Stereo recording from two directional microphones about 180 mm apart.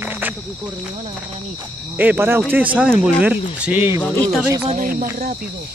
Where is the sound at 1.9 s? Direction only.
10° right (ahead or behind).